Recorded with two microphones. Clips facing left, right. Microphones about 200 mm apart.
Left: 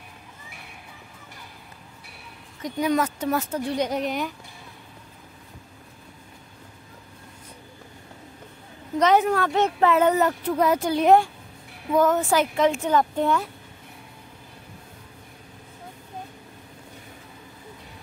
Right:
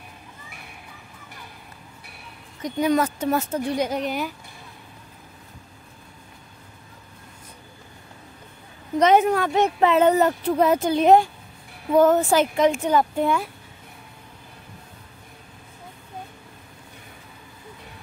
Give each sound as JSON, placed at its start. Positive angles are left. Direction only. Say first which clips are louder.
{"t": 2.8, "sound": "speech", "louder": "right 2 dB", "side_deg": -30}
{"t": 3.7, "sound": "speech", "louder": "left 1 dB", "side_deg": -5}
{"t": 9.0, "sound": "speech", "louder": "right 2 dB", "side_deg": -20}
{"t": 12.5, "sound": "a woman's voice", "louder": "right 2 dB", "side_deg": -15}